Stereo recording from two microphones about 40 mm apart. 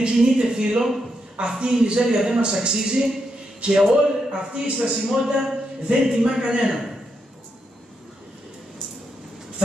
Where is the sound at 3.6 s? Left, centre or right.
Right.